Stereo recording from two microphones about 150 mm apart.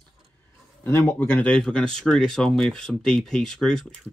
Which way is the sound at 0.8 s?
20° left (ahead or behind).